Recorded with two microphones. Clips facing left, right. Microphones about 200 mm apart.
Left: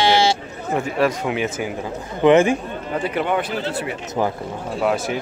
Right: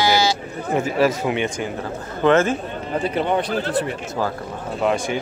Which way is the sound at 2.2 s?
15° left (ahead or behind).